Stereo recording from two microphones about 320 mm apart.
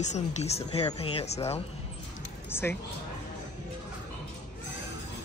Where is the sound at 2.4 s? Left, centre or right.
Centre.